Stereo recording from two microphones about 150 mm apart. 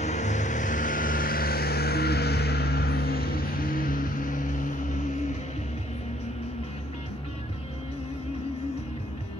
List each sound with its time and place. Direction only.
0.0 s vehicle: 50° left (ahead or behind)